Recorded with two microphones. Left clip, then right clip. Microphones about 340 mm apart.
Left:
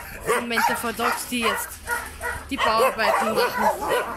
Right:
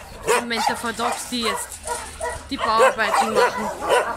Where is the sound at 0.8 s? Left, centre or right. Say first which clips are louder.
Even; centre.